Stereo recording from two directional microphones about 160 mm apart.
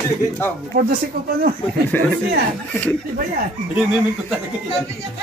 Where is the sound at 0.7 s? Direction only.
70° right (ahead or behind).